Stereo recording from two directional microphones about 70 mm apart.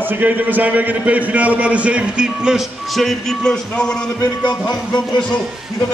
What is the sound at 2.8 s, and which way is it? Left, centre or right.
Speech, centre.